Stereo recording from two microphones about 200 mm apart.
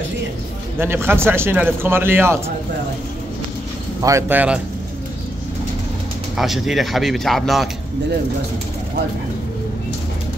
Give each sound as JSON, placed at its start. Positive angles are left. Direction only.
{"t": 0.7, "sound": "speech", "side_deg": -10}
{"t": 4.0, "sound": "speech", "side_deg": -10}
{"t": 6.3, "sound": "speech", "side_deg": 0}